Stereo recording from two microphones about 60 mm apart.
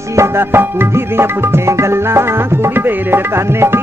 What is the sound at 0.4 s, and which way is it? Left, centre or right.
Music, right.